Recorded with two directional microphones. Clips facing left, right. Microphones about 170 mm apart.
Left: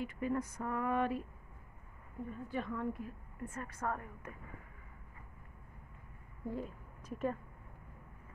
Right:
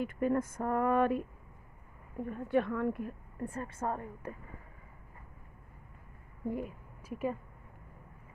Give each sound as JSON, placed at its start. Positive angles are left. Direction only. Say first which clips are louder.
{"t": 0.0, "sound": "speech", "louder": "right 6 dB", "side_deg": -50}
{"t": 2.2, "sound": "a woman's voice", "louder": "right 9 dB", "side_deg": -65}
{"t": 3.3, "sound": "a woman's voice", "louder": "right 5 dB", "side_deg": -30}
{"t": 6.5, "sound": "a woman's voice", "louder": "right 2 dB", "side_deg": -10}